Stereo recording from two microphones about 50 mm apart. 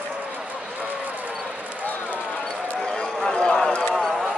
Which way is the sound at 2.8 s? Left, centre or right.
Centre.